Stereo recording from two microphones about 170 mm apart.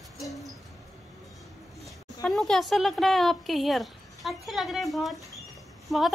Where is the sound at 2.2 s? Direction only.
Centre (ahead or behind).